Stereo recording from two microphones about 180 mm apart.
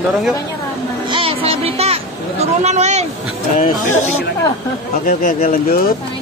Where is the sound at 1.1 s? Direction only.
30° right (ahead or behind).